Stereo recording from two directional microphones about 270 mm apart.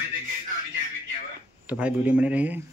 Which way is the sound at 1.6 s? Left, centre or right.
Centre.